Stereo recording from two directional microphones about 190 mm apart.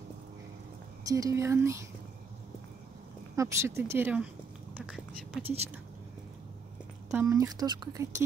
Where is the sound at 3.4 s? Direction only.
15° right (ahead or behind).